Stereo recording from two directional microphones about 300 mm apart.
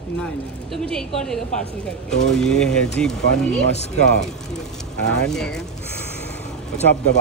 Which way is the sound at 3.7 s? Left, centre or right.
Left.